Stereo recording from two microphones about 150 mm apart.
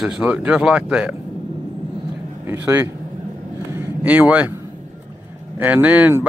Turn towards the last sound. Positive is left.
turn(degrees=-10)  # may be behind; listen again after turning